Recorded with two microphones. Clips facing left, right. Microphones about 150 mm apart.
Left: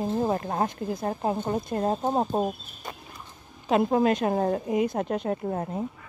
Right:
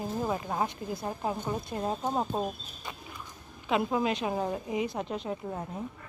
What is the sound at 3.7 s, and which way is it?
A woman's voice, 45° left (ahead or behind).